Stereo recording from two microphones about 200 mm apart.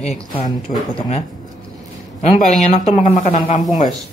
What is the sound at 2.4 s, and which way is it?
Speech, 35° left (ahead or behind).